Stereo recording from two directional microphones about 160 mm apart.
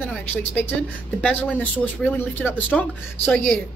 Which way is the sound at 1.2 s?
5° left (ahead or behind).